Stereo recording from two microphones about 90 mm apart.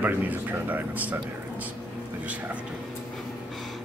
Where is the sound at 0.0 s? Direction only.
20° right (ahead or behind).